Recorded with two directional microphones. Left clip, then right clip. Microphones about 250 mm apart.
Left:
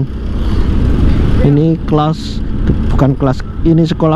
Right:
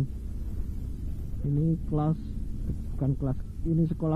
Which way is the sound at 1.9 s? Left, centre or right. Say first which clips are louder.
Left 17 dB; centre.